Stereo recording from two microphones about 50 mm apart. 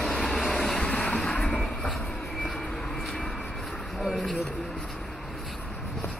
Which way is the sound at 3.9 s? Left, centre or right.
Centre.